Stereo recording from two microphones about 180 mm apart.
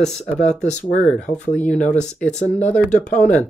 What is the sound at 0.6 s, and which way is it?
Speech, 40° left (ahead or behind).